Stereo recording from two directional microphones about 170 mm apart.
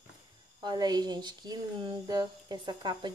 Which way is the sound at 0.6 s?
25° right (ahead or behind).